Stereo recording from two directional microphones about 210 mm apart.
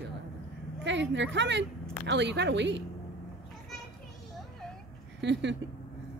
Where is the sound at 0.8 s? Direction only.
60° right (ahead or behind).